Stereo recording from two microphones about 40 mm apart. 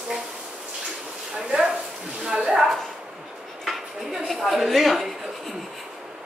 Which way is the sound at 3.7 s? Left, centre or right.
Centre.